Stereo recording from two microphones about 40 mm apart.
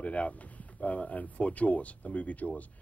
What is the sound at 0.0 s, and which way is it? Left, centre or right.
Speech, left.